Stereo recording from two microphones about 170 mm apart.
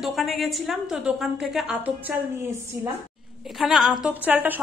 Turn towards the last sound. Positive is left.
turn(degrees=-10)  # may be behind; listen again after turning